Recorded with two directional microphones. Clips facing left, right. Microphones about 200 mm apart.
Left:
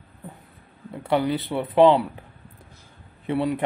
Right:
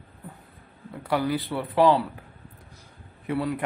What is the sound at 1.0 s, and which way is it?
Speech, 25° left (ahead or behind).